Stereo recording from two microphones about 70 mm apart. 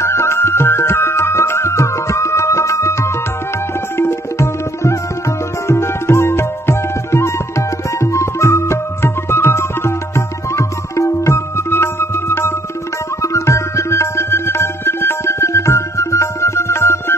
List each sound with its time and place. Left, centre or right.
0.0 s music: left
3.9 s tabla: left
5.7 s music: left